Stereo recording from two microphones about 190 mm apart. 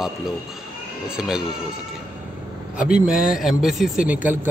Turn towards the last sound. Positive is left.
turn(degrees=-10)  # may be behind; listen again after turning